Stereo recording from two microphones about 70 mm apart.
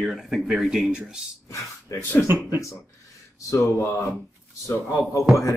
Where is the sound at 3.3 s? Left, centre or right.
Left.